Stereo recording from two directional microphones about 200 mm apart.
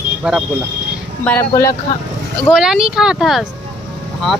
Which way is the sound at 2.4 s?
5° right (ahead or behind).